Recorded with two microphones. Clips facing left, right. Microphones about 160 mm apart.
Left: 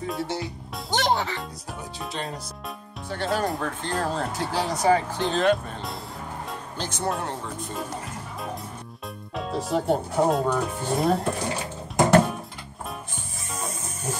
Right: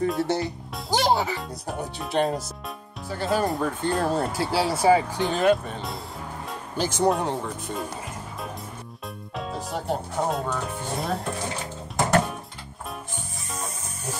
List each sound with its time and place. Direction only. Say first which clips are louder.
0.0 s speech: right 5 dB; centre (ahead or behind)
2.1 s speech: right 11 dB; 60° right (ahead or behind)
3.1 s speech: right 2 dB; 5° right (ahead or behind)
9.3 s speech: left 5 dB; centre (ahead or behind)